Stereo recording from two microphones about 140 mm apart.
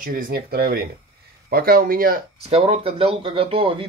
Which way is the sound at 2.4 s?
45° right (ahead or behind).